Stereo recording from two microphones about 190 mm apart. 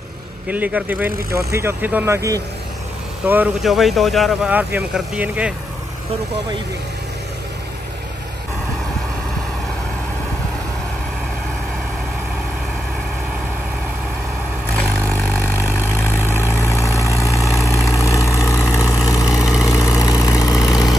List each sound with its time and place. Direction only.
0.5 s speech: 10° right (ahead or behind)
14.8 s vehicle: 10° left (ahead or behind)